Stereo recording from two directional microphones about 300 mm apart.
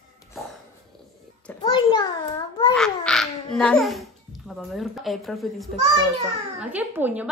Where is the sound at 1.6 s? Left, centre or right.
Centre.